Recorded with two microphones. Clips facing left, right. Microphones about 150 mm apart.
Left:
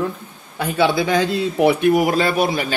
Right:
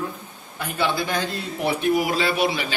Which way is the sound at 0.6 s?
90° left.